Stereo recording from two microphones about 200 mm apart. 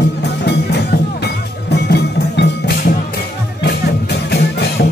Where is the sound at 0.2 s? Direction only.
55° left (ahead or behind).